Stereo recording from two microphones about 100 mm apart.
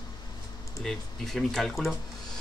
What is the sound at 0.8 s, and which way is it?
Speech, 5° left (ahead or behind).